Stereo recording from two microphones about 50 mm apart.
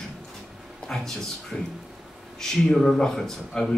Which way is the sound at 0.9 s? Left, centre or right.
Centre.